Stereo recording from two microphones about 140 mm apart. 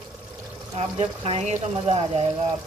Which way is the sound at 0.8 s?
45° right (ahead or behind).